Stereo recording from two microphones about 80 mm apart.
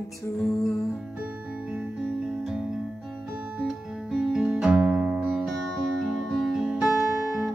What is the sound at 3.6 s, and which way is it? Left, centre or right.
Music, centre.